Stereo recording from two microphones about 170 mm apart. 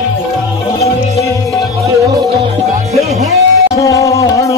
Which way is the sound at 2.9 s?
40° right (ahead or behind).